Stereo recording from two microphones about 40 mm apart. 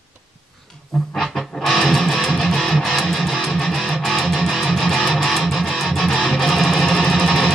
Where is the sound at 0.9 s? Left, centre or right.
Centre.